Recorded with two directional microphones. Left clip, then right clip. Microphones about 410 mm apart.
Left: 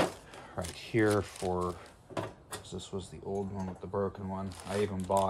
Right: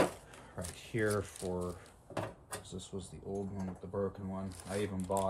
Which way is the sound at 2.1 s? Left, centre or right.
Centre.